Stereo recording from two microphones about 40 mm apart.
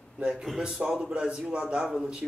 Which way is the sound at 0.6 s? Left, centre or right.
Centre.